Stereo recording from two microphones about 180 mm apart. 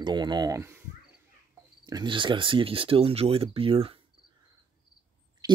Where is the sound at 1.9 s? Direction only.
25° right (ahead or behind).